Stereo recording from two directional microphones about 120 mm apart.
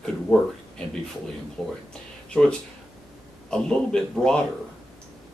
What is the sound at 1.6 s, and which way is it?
Speech, 5° left (ahead or behind).